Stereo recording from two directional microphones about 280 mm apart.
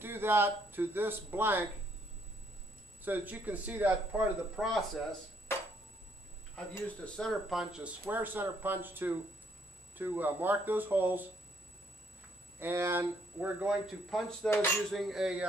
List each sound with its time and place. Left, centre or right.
0.0 s speech: centre
3.0 s speech: centre
6.5 s speech: centre
12.5 s speech: centre